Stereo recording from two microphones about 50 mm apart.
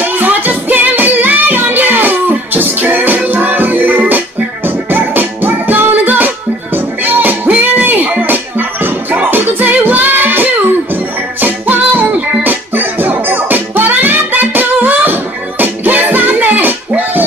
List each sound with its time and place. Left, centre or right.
0.0 s music: right